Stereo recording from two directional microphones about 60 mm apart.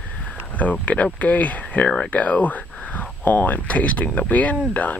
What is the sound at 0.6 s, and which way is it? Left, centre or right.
Speech, left.